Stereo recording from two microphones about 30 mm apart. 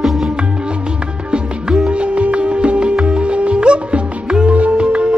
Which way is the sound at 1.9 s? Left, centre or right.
Right.